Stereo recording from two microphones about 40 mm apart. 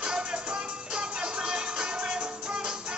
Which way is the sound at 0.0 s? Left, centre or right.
Right.